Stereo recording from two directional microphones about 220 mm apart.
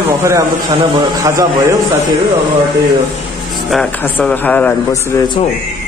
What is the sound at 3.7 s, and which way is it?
A man's voice, 5° left (ahead or behind).